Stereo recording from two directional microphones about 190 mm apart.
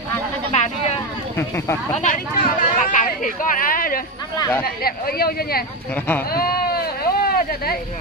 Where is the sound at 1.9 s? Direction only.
40° left (ahead or behind).